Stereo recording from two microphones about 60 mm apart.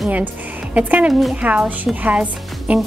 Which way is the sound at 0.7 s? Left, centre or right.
Right.